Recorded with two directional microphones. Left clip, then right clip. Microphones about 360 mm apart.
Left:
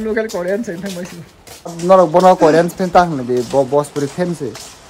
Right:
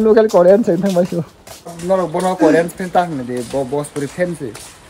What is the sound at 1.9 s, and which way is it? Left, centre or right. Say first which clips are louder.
Speech: left 8 dB; centre.